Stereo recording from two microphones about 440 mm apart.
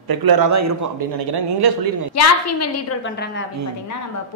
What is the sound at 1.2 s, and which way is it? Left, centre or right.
Speech, right.